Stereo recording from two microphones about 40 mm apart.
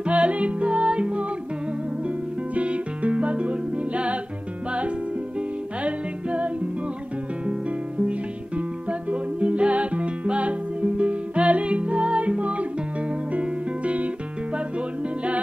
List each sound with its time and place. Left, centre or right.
0.0 s music: right
2.5 s music: right
5.9 s music: right
9.1 s music: right